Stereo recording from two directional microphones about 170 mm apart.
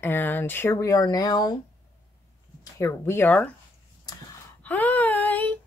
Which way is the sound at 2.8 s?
15° left (ahead or behind).